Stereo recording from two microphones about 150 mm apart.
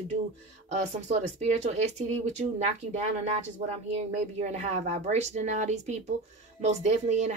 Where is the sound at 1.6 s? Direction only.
50° right (ahead or behind).